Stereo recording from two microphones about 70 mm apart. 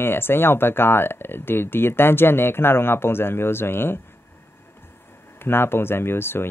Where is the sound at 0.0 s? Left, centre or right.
Left.